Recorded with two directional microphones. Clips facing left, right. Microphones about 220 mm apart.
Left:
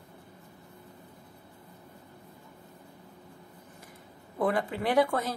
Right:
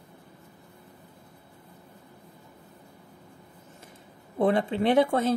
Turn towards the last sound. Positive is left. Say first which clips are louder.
# right 4 dB
turn(degrees=-25)  # may be behind; listen again after turning